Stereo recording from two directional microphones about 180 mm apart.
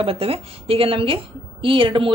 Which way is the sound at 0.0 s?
30° right (ahead or behind).